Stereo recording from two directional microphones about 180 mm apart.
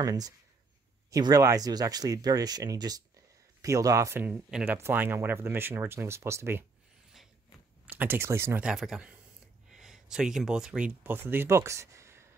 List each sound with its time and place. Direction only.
0.0 s speech: 20° right (ahead or behind)
7.8 s speech: 10° right (ahead or behind)